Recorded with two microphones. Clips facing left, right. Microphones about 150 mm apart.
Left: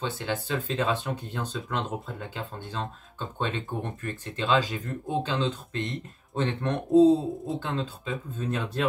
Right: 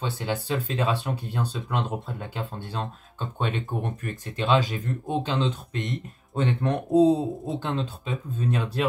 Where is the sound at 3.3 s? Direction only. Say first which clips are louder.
Right 2 dB; 10° right (ahead or behind).